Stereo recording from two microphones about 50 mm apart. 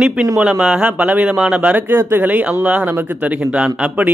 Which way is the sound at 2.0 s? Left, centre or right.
Right.